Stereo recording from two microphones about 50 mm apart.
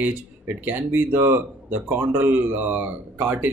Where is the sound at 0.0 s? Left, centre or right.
Right.